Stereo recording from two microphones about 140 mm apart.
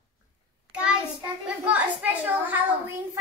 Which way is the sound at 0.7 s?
10° right (ahead or behind).